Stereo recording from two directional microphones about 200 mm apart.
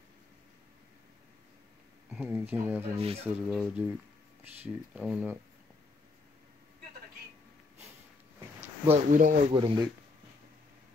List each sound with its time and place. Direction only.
2.1 s speech: 10° right (ahead or behind)
3.0 s speech: 30° right (ahead or behind)
3.4 s speech: 5° right (ahead or behind)
8.8 s speech: 35° right (ahead or behind)
9.5 s speech: 25° right (ahead or behind)